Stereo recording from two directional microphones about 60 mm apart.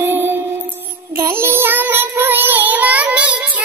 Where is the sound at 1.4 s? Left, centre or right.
Right.